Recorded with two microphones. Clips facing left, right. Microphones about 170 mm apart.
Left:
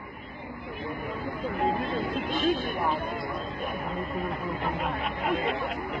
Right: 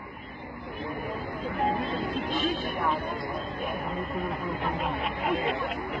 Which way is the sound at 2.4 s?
50° left (ahead or behind).